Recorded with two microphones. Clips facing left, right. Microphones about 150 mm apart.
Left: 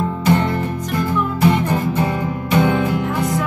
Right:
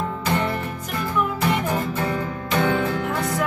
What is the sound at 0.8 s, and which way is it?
Music, 5° right (ahead or behind).